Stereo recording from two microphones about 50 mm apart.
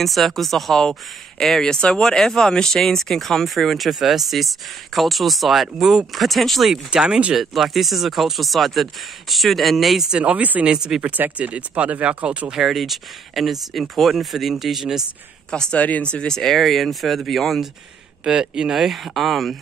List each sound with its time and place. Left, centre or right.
0.0 s speech: centre
6.1 s speech: centre
6.9 s speech: centre
7.3 s speech: centre
10.1 s speech: right
10.7 s speech: centre
11.0 s speech: right
12.4 s speech: centre
15.5 s speech: centre
15.8 s speech: left
16.3 s speech: centre
18.2 s speech: centre